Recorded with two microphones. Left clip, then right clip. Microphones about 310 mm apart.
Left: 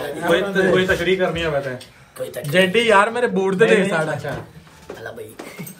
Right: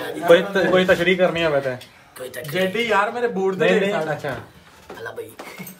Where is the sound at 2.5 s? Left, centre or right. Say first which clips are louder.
Left 6 dB; left.